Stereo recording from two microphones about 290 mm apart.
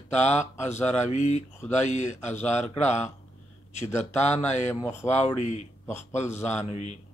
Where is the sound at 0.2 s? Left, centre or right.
Left.